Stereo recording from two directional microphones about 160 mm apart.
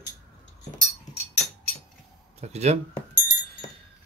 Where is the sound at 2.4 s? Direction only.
45° right (ahead or behind).